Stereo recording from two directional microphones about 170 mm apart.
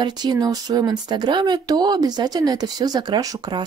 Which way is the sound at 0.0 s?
25° right (ahead or behind).